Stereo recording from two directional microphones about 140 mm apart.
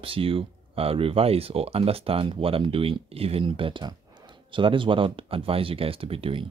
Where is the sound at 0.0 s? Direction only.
40° right (ahead or behind).